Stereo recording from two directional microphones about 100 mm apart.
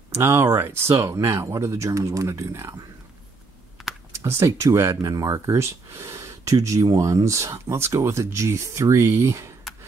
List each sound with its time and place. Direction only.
0.1 s speech: 25° right (ahead or behind)
4.1 s speech: 25° right (ahead or behind)